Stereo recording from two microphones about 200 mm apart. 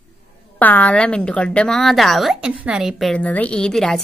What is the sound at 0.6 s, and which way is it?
A woman's voice, 10° left (ahead or behind).